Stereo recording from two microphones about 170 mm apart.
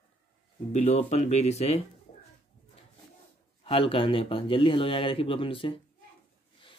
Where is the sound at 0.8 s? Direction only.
40° left (ahead or behind).